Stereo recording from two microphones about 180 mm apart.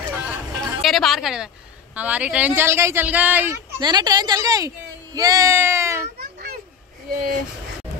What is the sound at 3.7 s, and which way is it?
Speech, 20° right (ahead or behind).